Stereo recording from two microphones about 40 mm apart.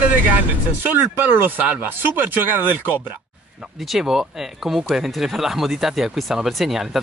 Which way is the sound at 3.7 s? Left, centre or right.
Centre.